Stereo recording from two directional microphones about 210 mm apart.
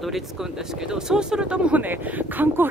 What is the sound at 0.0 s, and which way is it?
Speech, centre (ahead or behind).